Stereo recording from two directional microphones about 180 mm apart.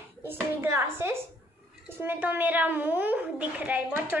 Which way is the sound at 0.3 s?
15° right (ahead or behind).